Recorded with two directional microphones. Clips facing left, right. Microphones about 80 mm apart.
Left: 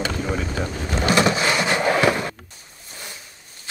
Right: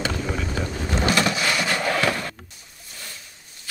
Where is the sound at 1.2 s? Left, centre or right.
Left.